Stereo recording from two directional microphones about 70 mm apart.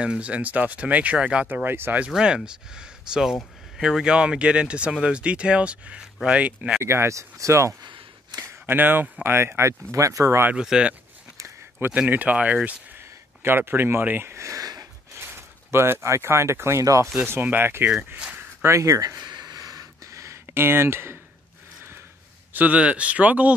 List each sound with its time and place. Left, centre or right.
0.0 s speech: centre
1.5 s speech: right
2.0 s speech: centre
6.8 s speech: right
8.6 s speech: right
10.5 s speech: centre
13.4 s speech: right
14.6 s a sound: right
15.1 s speech: right
16.8 s speech: right
17.3 s speech: right
18.1 s speech: right
18.6 s a sound: right
22.5 s speech: right